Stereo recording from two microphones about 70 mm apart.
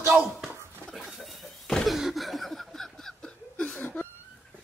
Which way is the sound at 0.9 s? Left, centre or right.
Centre.